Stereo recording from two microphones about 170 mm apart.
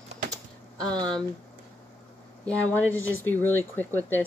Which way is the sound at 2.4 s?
10° left (ahead or behind).